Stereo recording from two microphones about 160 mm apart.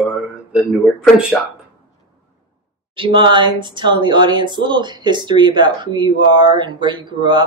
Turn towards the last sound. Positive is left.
turn(degrees=-30)  # may be behind; listen again after turning